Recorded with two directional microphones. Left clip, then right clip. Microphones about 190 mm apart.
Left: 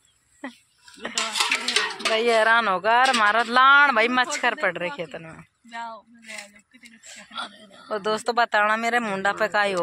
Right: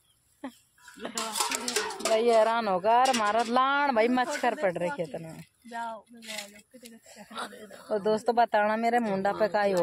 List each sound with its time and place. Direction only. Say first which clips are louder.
1.1 s a sound: left 8 dB; 45° right (ahead or behind)
2.1 s speech: left 4 dB; centre (ahead or behind)
5.7 s speech: left 1 dB; 65° right (ahead or behind)
7.2 s speech: left 4 dB; 80° right
7.9 s speech: left 2 dB; 15° right (ahead or behind)